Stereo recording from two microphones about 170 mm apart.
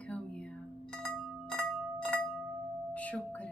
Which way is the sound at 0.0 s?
5° left (ahead or behind).